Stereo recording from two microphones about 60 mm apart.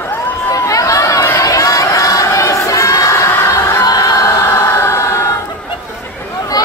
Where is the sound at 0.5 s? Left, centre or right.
Left.